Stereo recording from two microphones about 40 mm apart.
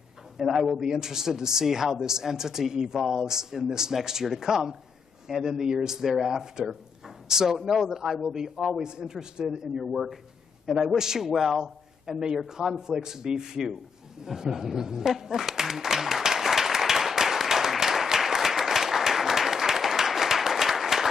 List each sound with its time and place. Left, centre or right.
0.4 s speech: centre
0.7 s speech: centre
9.8 s speech: centre
11.6 s a man's voice: centre
14.2 s a sound: centre